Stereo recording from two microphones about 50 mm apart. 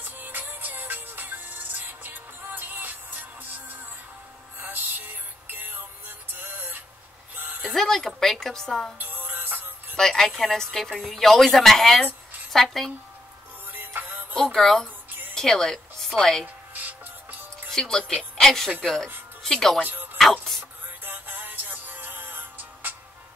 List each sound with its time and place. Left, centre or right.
0.0 s music: right
7.3 s a sound: right
7.7 s a woman's voice: centre
8.9 s music: right
9.9 s a woman's voice: centre
13.7 s music: right
14.3 s a woman's voice: centre
15.0 s music: right
15.3 s a woman's voice: centre
16.7 s music: right
17.6 s speech: centre
21.0 s music: right